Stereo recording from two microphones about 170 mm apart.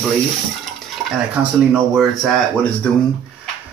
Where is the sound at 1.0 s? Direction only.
5° right (ahead or behind).